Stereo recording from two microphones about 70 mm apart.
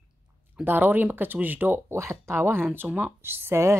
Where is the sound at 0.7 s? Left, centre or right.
Right.